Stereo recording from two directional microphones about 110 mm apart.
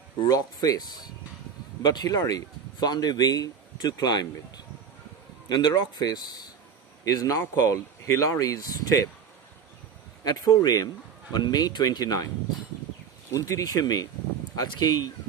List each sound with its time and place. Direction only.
0.3 s speech: 35° left (ahead or behind)
10.2 s speech: 35° left (ahead or behind)
13.3 s speech: 30° left (ahead or behind)